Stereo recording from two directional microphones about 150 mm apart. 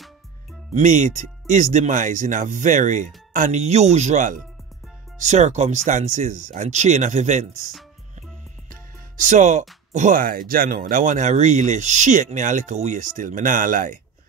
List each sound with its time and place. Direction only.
0.7 s speech: 55° right (ahead or behind)